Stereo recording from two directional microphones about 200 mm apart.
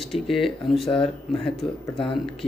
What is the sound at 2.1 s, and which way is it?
Speech, centre (ahead or behind).